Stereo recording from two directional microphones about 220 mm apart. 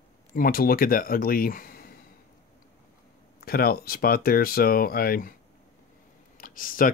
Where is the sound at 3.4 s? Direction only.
45° left (ahead or behind).